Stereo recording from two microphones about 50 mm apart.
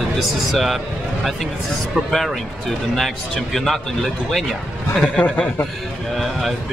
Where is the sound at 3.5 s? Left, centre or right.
Centre.